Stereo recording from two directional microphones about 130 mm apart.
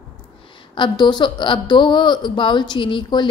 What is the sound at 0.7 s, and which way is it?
Speech, 35° left (ahead or behind).